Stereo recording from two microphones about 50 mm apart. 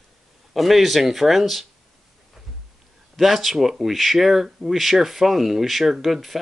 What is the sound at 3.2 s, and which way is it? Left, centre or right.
Speech, centre.